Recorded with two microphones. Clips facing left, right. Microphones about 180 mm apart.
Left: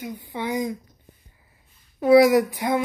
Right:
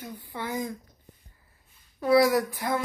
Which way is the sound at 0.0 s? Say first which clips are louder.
Left 6 dB; 15° left (ahead or behind).